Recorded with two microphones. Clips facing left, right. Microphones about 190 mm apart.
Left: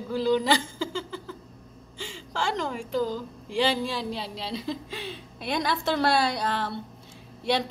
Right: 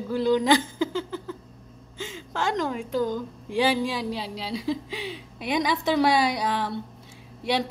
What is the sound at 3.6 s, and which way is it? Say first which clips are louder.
Speech: right 2 dB; 15° right (ahead or behind).